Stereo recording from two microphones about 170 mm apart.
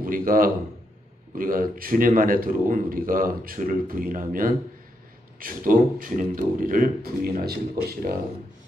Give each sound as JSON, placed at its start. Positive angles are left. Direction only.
{"t": 0.0, "sound": "a man's voice", "side_deg": -55}